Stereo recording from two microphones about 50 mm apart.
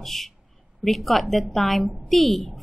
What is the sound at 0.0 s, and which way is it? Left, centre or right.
A woman's voice, centre.